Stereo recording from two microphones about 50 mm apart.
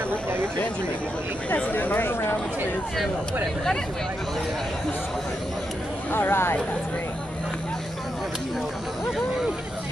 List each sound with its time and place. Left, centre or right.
1.5 s speech: left
6.1 s speech: left